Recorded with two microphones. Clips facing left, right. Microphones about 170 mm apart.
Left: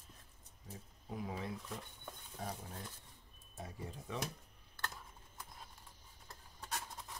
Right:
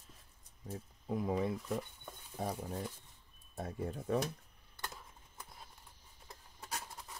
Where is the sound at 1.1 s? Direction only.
55° right (ahead or behind).